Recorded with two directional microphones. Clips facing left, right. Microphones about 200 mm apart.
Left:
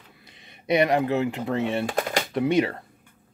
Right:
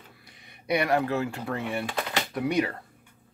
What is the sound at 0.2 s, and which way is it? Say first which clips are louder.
Speech: left 2 dB; 20° left (ahead or behind).